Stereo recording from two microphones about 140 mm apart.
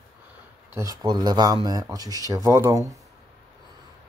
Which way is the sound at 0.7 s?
25° right (ahead or behind).